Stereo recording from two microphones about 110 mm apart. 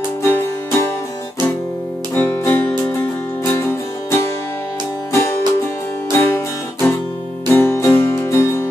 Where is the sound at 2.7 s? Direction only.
30° left (ahead or behind).